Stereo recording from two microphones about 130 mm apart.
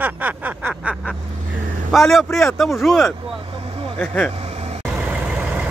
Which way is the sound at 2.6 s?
Centre (ahead or behind).